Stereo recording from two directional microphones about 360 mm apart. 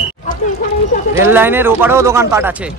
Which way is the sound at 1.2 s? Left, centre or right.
Centre.